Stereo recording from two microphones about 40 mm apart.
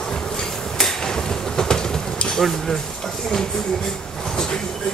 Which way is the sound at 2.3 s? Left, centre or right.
Centre.